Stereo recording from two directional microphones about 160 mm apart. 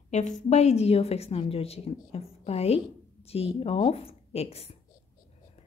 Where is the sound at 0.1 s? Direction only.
50° left (ahead or behind).